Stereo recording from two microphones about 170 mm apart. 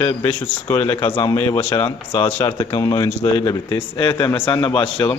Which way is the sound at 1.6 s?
35° left (ahead or behind).